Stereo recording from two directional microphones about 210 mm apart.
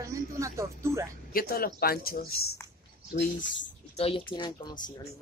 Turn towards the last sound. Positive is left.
turn(degrees=20)  # may be behind; listen again after turning